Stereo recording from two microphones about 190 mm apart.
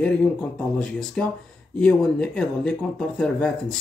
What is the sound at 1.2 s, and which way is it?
Speech, 5° left (ahead or behind).